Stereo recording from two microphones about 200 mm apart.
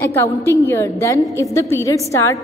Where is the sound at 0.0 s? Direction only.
10° left (ahead or behind).